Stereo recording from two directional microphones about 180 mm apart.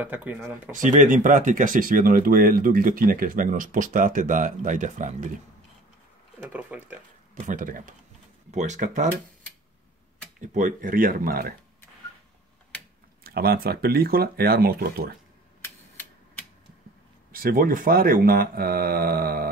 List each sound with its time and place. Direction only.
0.0 s speech: 10° right (ahead or behind)
0.7 s speech: 45° right (ahead or behind)
6.5 s speech: 10° right (ahead or behind)
7.3 s speech: 45° right (ahead or behind)
10.4 s speech: 45° right (ahead or behind)
13.2 s speech: 60° right (ahead or behind)
17.3 s speech: 50° right (ahead or behind)